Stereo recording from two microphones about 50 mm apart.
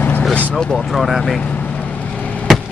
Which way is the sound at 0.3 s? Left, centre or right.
Left.